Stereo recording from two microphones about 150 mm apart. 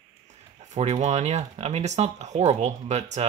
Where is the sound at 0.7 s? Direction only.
50° right (ahead or behind).